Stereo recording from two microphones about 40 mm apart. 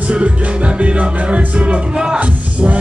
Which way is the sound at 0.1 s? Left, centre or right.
Right.